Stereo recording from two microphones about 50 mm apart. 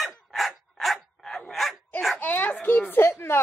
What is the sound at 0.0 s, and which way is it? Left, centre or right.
Dog, centre.